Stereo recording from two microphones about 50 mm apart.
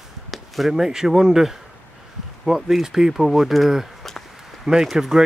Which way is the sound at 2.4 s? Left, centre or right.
Centre.